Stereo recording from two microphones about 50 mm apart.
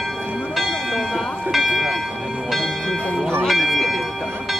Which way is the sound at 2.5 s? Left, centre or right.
Centre.